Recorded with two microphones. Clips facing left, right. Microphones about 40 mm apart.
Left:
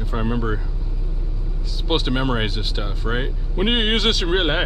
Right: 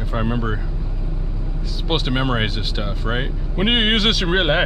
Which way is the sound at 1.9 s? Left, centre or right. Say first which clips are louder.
Even; centre.